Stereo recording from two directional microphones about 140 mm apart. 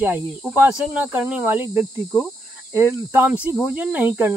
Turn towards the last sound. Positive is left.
turn(degrees=-10)  # may be behind; listen again after turning